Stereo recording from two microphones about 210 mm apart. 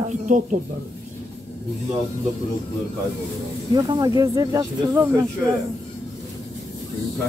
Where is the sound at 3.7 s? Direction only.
20° right (ahead or behind).